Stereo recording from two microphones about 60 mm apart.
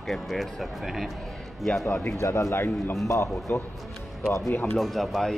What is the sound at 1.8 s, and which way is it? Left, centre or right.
Speech, left.